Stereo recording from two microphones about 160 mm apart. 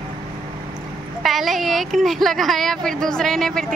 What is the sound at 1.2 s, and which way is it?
A woman's voice, centre (ahead or behind).